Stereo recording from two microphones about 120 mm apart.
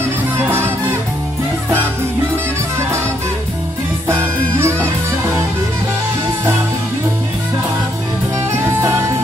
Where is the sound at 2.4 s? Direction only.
20° right (ahead or behind).